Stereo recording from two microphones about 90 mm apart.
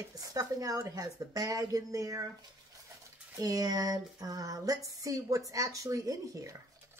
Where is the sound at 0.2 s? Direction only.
40° right (ahead or behind).